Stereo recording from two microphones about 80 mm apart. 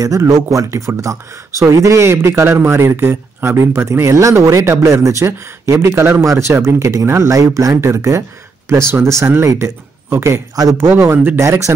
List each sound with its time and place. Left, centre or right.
0.0 s speech: right
10.5 s speech: right
10.8 s speech: right